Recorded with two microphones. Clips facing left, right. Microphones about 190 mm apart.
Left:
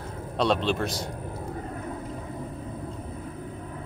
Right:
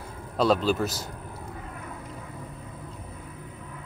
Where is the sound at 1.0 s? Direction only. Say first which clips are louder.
Left 5 dB; 30° left (ahead or behind).